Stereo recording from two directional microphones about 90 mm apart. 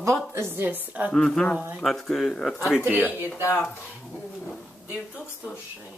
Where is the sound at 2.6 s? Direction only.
10° right (ahead or behind).